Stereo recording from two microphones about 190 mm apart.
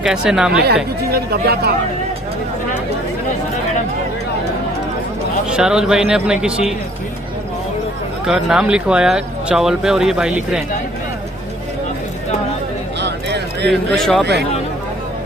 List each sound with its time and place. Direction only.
0.0 s speech: 5° right (ahead or behind)
1.1 s speech: 55° right (ahead or behind)
5.5 s speech: 5° right (ahead or behind)
8.3 s speech: centre (ahead or behind)
13.0 s a sound: 60° right (ahead or behind)
13.7 s speech: centre (ahead or behind)